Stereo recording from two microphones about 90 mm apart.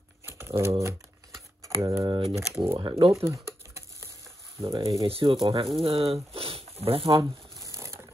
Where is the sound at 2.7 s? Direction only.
90° right.